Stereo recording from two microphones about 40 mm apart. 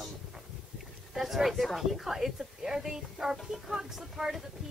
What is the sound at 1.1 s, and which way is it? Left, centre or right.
A woman's voice, centre.